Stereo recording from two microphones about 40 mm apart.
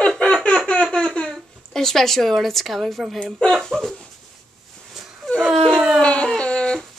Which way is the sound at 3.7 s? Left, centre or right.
Right.